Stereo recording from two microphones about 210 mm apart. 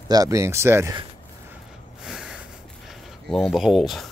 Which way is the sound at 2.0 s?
Centre (ahead or behind).